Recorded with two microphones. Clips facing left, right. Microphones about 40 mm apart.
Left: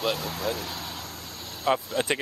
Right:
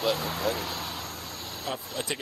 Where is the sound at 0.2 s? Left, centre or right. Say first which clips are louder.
Right 1 dB; centre.